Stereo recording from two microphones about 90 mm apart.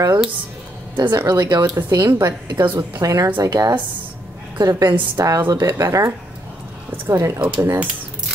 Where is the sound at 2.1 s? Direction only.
45° right (ahead or behind).